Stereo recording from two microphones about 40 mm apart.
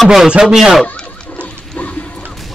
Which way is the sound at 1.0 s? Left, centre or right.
Left.